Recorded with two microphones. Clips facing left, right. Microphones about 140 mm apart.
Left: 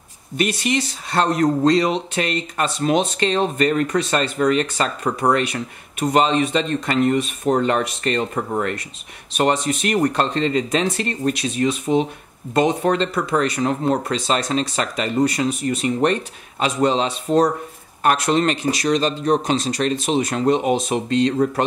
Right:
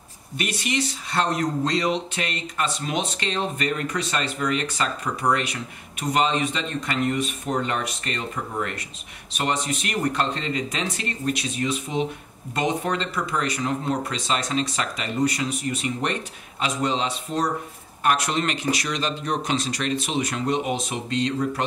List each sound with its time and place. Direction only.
1.1 s speech: 50° left (ahead or behind)
13.1 s speech: 55° left (ahead or behind)